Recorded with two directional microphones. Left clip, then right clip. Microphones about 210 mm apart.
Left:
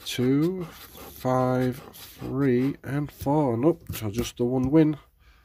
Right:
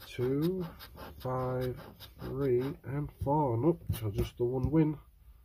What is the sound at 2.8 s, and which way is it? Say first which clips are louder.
Speech: left 6 dB; 40° left (ahead or behind).